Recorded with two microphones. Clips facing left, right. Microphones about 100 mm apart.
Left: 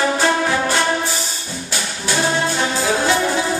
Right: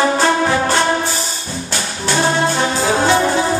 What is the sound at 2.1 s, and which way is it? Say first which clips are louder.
Music: right 3 dB; 25° right (ahead or behind).